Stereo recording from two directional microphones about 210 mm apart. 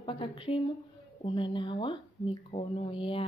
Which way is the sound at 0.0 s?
25° left (ahead or behind).